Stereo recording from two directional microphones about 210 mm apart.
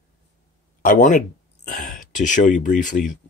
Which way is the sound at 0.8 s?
40° left (ahead or behind).